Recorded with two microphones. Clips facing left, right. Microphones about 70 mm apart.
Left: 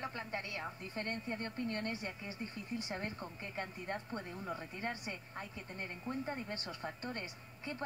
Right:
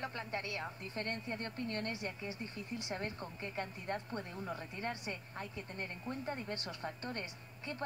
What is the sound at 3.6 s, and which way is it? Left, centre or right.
Speech, left.